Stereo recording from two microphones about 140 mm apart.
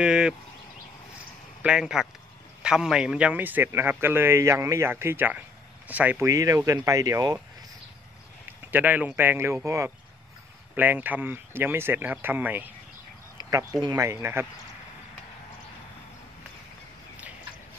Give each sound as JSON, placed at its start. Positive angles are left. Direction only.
{"t": 0.0, "sound": "speech", "side_deg": -5}
{"t": 1.6, "sound": "a man's voice", "side_deg": -5}
{"t": 6.2, "sound": "speech", "side_deg": -25}
{"t": 8.7, "sound": "a man's voice", "side_deg": -10}
{"t": 13.4, "sound": "speech", "side_deg": -25}